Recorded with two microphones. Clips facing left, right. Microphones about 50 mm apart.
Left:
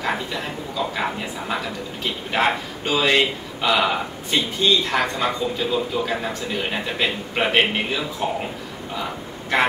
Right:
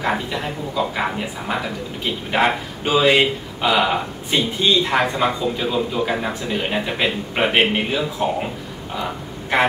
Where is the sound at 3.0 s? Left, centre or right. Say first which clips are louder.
Right 4 dB; centre.